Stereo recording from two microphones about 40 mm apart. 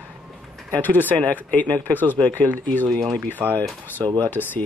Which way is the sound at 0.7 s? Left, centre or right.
Left.